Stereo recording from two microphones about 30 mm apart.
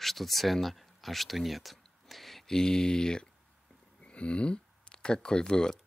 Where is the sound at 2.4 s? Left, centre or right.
Left.